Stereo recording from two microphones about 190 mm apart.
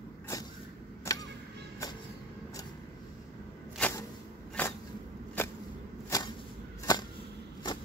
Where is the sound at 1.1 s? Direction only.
15° left (ahead or behind).